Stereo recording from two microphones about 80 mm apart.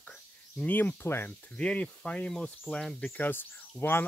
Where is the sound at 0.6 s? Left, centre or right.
Left.